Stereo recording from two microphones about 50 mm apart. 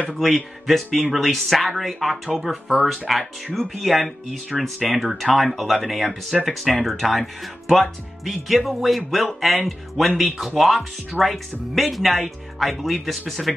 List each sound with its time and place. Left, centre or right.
0.1 s speech: centre